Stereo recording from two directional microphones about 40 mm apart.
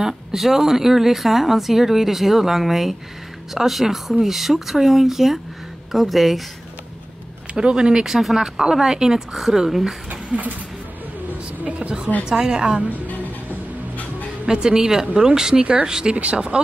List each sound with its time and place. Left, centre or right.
0.0 s speech: centre
7.5 s speech: right
8.0 s speech: centre
9.3 s speech: centre
10.3 s speech: right
11.2 s vehicle: right
12.3 s speech: centre
13.0 s music: left
14.4 s speech: centre